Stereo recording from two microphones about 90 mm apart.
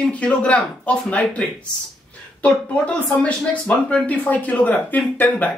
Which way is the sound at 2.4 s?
15° left (ahead or behind).